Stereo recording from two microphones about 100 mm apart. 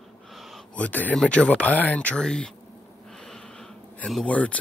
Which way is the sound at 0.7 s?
15° left (ahead or behind).